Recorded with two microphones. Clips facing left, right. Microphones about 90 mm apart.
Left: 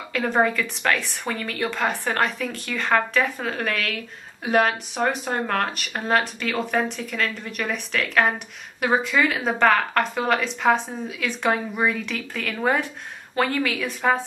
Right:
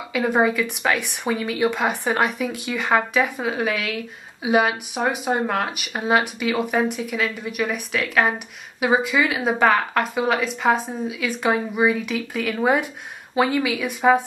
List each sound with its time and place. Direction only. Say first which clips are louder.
0.1 s speech: right 2 dB; 5° right (ahead or behind)